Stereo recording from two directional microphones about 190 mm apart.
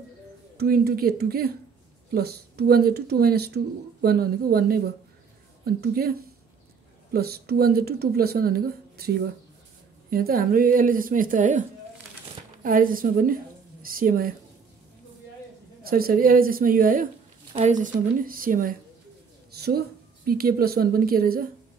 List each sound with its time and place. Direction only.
0.6 s speech: 55° right (ahead or behind)
12.6 s speech: 45° right (ahead or behind)
15.8 s speech: 50° right (ahead or behind)
20.2 s speech: 50° right (ahead or behind)